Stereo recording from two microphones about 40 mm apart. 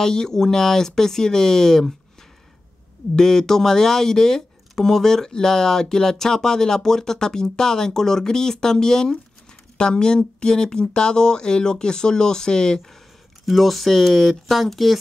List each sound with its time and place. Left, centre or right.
0.0 s speech: centre
3.2 s speech: centre
13.5 s speech: centre